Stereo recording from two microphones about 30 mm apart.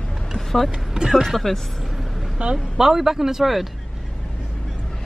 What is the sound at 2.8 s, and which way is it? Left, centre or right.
Speech, centre.